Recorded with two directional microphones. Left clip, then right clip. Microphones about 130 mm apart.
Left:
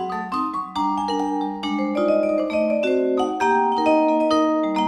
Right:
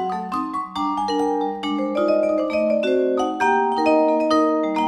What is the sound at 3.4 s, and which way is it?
Music, centre (ahead or behind).